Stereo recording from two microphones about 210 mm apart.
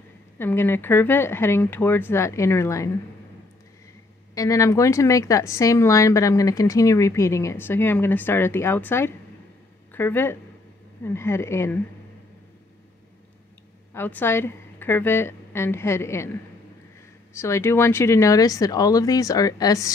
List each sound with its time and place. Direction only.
0.4 s a woman's voice: 10° left (ahead or behind)
4.4 s a woman's voice: 15° left (ahead or behind)
13.9 s a woman's voice: 10° left (ahead or behind)
17.3 s a woman's voice: 10° left (ahead or behind)